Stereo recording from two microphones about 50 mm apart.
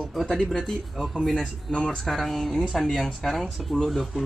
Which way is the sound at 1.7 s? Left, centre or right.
Centre.